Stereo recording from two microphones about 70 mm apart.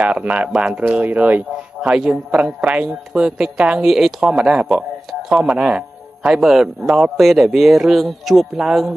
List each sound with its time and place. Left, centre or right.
0.0 s a man's voice: centre
1.8 s a man's voice: centre
5.6 s music: centre
6.4 s speech: centre